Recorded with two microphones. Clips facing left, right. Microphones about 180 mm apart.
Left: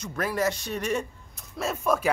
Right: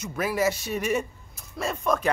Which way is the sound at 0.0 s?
10° right (ahead or behind).